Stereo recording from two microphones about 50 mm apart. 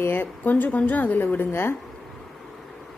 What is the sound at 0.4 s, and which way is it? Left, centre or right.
A woman's voice, left.